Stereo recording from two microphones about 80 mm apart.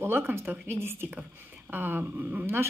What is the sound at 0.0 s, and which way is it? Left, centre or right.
A woman's voice, right.